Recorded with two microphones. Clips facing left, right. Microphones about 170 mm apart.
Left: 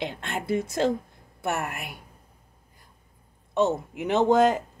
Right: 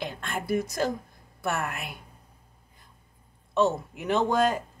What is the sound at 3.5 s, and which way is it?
Speech, 20° left (ahead or behind).